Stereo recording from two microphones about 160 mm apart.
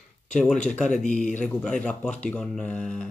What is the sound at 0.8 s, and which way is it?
Speech, 50° left (ahead or behind).